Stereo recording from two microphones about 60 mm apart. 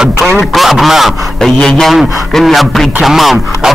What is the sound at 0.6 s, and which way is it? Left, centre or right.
Speech, centre.